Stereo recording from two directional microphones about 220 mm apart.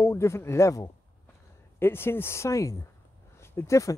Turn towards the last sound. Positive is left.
turn(degrees=15)  # may be behind; listen again after turning